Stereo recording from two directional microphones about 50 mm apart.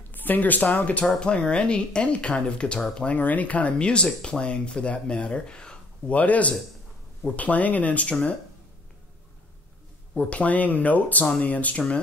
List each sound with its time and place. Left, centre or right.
0.1 s speech: left
1.2 s speech: left
10.1 s speech: left